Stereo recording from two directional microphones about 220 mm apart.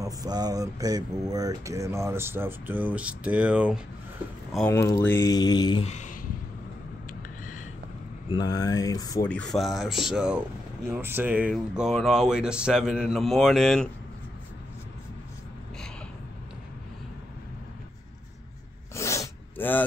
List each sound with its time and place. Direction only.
0.0 s speech: 15° right (ahead or behind)
4.6 s speech: 15° left (ahead or behind); by 6.1 s 30° left (ahead or behind)
7.1 s a sound: 35° left (ahead or behind)
8.3 s speech: 20° left (ahead or behind)
9.3 s speech: 5° left (ahead or behind)
18.9 s sneeze: 15° left (ahead or behind)